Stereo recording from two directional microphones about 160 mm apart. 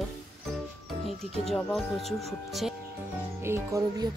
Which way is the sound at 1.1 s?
Centre (ahead or behind).